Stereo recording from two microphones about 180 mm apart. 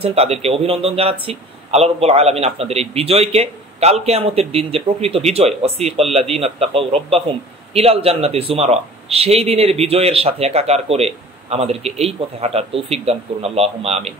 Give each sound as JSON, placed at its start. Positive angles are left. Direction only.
{"t": 0.0, "sound": "a man's voice", "side_deg": -35}